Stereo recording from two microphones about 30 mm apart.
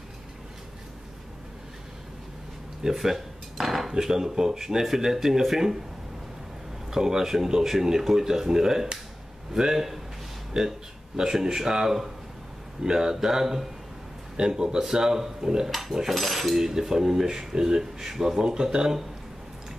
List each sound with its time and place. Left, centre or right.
2.8 s dishes: centre
3.9 s speech: centre
6.9 s speech: centre
15.7 s dishes: centre
16.8 s speech: centre